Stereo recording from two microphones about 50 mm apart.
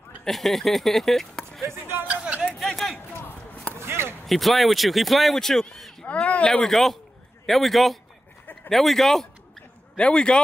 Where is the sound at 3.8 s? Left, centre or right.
Right.